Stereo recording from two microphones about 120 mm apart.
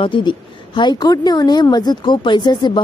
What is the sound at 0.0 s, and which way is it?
A woman's voice, 45° left (ahead or behind).